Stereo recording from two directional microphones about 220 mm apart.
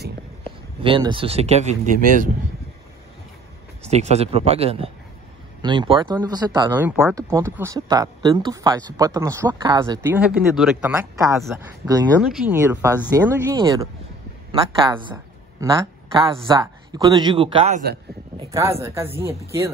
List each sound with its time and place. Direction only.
0.4 s speech: 25° right (ahead or behind)
3.9 s speech: 30° right (ahead or behind); by 12.5 s centre (ahead or behind)
12.5 s speech: 15° right (ahead or behind); by 17.8 s 30° right (ahead or behind)
18.5 s speech: 15° right (ahead or behind)